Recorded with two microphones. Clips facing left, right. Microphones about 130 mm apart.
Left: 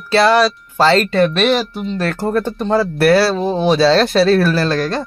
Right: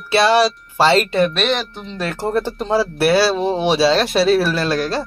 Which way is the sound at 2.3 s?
30° right (ahead or behind).